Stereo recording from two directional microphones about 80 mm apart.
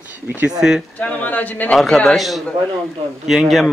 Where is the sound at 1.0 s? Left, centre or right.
Centre.